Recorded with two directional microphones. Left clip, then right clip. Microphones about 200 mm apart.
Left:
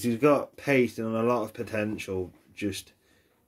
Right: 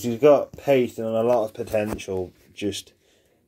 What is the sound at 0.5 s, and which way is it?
Speech, 50° left (ahead or behind).